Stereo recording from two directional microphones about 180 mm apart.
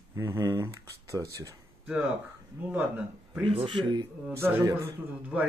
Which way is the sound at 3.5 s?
30° right (ahead or behind).